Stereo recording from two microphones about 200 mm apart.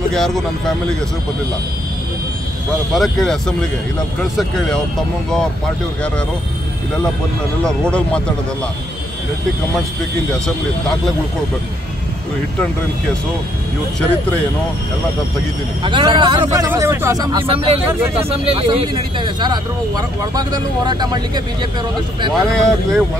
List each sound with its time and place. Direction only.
0.1 s speech: centre (ahead or behind)
2.9 s speech: centre (ahead or behind)
7.6 s speech: 5° left (ahead or behind)
15.8 s speech: 25° right (ahead or behind)
22.3 s speech: centre (ahead or behind)